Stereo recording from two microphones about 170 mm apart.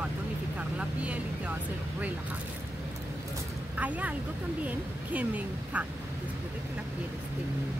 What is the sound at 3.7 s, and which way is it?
Speech, 10° right (ahead or behind).